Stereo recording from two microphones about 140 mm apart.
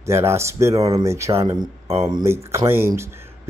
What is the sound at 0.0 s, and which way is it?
A man's voice, 20° right (ahead or behind).